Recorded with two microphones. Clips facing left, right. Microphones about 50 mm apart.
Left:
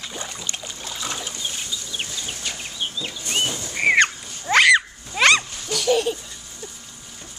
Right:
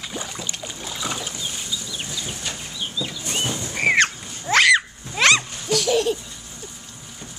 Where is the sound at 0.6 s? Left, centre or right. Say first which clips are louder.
Right 1 dB; centre.